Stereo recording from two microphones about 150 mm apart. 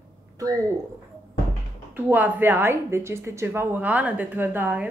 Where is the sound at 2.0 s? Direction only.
10° right (ahead or behind).